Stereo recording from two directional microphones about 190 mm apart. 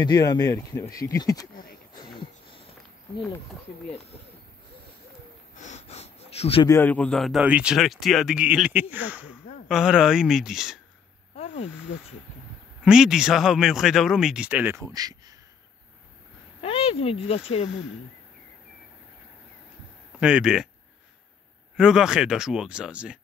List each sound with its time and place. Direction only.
0.0 s speech: 20° left (ahead or behind)
2.0 s a sound: 25° left (ahead or behind)
5.6 s gasp: 35° left (ahead or behind)
6.7 s speech: 10° left (ahead or behind)
11.3 s a sound: 40° left (ahead or behind)
12.8 s speech: 5° right (ahead or behind); by 15.3 s 20° right (ahead or behind)
16.6 s speech: 30° left (ahead or behind)
20.2 s speech: 5° right (ahead or behind)
21.7 s speech: 5° right (ahead or behind)